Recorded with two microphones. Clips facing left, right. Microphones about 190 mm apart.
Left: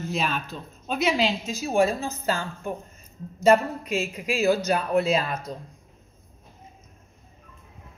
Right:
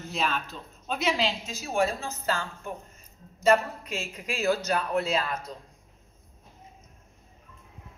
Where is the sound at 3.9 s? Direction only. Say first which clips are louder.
Left 8 dB; 10° left (ahead or behind).